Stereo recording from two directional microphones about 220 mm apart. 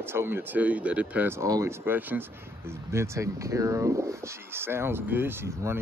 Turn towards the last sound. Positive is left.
turn(degrees=-10)  # may be behind; listen again after turning